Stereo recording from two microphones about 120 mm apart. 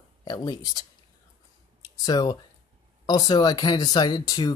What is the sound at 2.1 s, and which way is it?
Speech, 35° left (ahead or behind).